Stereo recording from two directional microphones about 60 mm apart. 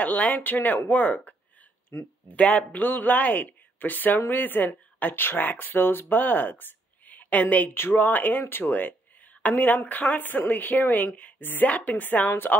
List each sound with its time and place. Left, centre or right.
0.0 s speech: left
1.9 s speech: left
2.3 s speech: centre
2.8 s speech: left
7.7 s speech: left